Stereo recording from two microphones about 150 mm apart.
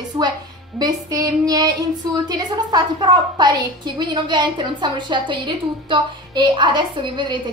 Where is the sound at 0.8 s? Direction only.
25° right (ahead or behind).